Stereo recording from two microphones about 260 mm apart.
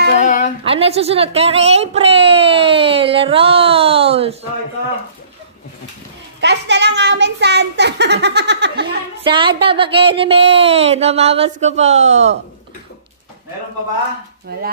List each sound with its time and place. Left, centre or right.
0.2 s a sound: left
0.7 s speech: right
6.4 s a child's voice: right
8.8 s speech: centre